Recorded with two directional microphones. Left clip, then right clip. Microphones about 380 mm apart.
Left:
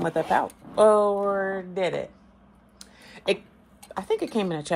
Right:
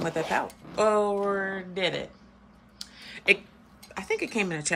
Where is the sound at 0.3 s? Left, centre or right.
Centre.